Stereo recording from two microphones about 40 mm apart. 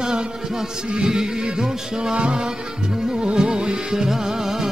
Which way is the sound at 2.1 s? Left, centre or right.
Right.